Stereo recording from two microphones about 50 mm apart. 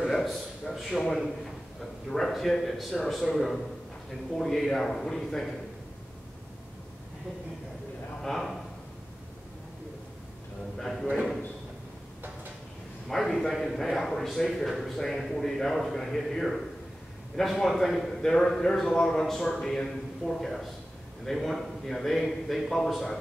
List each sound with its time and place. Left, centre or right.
0.0 s a sound: centre
2.0 s a man's voice: centre
8.2 s a man's voice: centre
10.8 s a man's voice: centre
13.1 s a man's voice: centre